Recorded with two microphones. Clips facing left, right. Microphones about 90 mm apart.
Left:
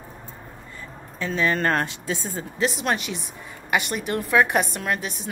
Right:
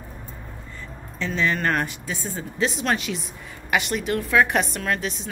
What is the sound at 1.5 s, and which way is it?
Speech, 30° left (ahead or behind).